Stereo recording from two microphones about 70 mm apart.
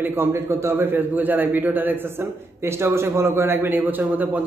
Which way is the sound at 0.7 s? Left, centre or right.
Right.